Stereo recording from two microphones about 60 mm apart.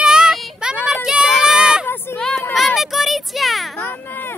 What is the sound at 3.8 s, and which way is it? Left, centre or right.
Baby cry, left.